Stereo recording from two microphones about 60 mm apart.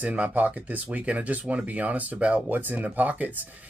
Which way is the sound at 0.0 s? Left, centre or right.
Right.